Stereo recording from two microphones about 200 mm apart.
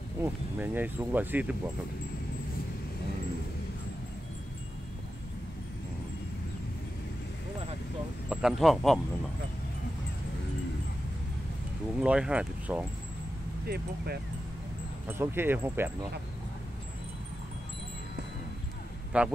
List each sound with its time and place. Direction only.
0.2 s speech: 10° right (ahead or behind)
8.3 s speech: centre (ahead or behind)
12.0 s speech: 5° right (ahead or behind)
13.7 s speech: 50° right (ahead or behind)
15.0 s speech: 10° right (ahead or behind)
19.1 s speech: 5° right (ahead or behind)